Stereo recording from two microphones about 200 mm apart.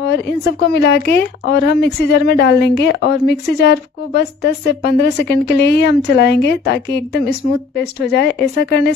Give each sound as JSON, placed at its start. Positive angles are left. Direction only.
{"t": 0.0, "sound": "a woman's voice", "side_deg": 55}